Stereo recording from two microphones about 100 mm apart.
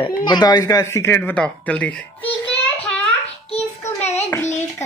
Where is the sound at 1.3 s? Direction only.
15° left (ahead or behind).